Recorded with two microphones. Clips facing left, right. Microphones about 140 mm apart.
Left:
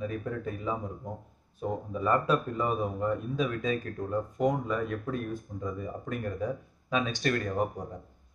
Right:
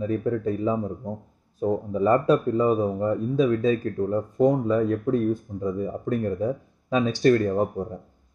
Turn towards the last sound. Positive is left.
turn(degrees=-30)  # may be behind; listen again after turning